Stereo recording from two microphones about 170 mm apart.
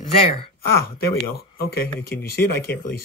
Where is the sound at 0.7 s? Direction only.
65° left (ahead or behind).